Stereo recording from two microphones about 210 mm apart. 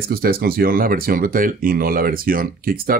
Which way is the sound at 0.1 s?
45° right (ahead or behind).